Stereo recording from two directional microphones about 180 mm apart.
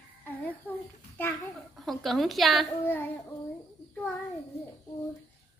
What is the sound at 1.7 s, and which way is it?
Speech, centre (ahead or behind).